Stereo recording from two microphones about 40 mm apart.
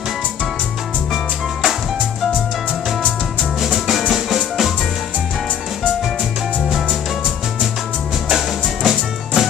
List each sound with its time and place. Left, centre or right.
1.1 s music: centre
3.6 s music: centre
8.3 s music: centre